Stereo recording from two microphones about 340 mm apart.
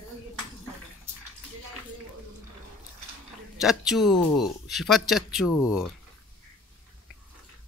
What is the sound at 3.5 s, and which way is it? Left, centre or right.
Speech, centre.